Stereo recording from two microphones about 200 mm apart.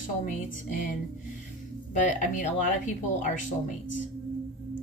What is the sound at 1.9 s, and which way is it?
A woman's voice, 40° left (ahead or behind).